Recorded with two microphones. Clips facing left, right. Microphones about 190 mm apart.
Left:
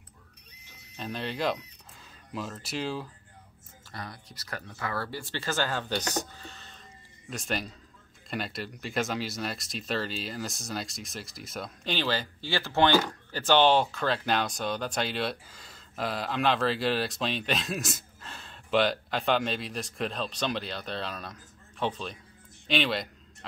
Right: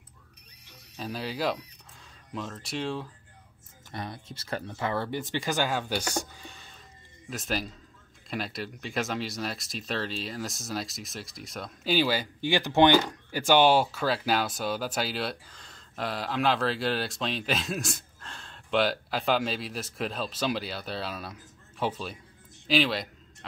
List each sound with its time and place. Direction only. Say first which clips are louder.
0.9 s speech: even; 5° right (ahead or behind)
3.9 s speech: right 4 dB; 25° right (ahead or behind)
7.2 s speech: right 1 dB; centre (ahead or behind)